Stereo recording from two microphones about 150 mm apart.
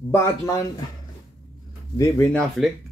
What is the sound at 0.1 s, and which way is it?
Speech, 20° left (ahead or behind).